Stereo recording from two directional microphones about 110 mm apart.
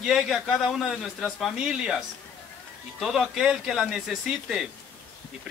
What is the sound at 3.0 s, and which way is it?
A man's voice, centre (ahead or behind).